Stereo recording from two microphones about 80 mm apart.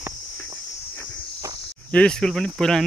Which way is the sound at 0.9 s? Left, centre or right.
Left.